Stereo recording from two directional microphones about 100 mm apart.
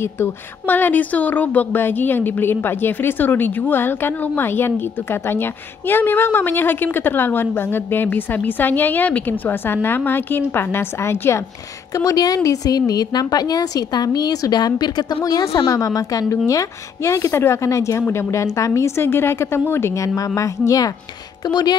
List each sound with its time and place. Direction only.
0.0 s a woman's voice: 20° left (ahead or behind); by 21.7 s 40° left (ahead or behind)